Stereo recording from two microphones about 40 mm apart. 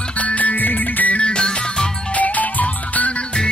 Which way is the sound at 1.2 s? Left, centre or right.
Left.